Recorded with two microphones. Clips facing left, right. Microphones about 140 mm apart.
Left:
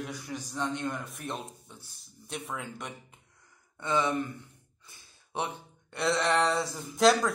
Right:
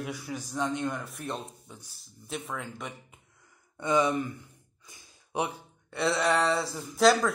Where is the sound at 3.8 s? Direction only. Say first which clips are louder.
Right 3 dB; 15° right (ahead or behind).